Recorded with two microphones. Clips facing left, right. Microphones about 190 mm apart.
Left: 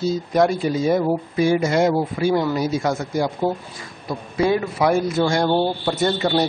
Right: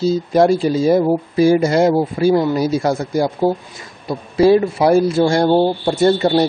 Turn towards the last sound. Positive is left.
turn(degrees=-30)  # may be behind; listen again after turning